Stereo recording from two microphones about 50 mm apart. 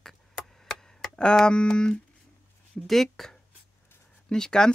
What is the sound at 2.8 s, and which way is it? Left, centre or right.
Speech, centre.